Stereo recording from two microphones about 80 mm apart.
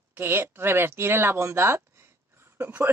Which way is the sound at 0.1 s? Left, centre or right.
Right.